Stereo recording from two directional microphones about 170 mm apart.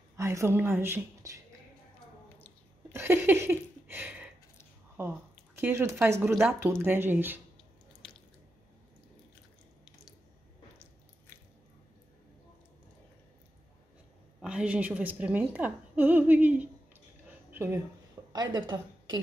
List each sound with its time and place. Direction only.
0.1 s a woman's voice: 15° right (ahead or behind)
2.9 s a sound: 15° right (ahead or behind)
5.6 s a woman's voice: 15° right (ahead or behind)
8.0 s drip: 5° left (ahead or behind)
14.4 s a woman's voice: 5° right (ahead or behind)
17.5 s a sound: 10° right (ahead or behind)
18.3 s speech: 25° right (ahead or behind)